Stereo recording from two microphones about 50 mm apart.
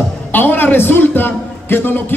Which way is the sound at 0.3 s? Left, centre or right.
Left.